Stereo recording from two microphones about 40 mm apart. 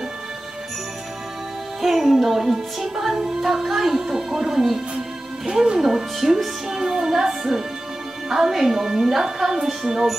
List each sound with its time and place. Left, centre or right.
1.8 s music: centre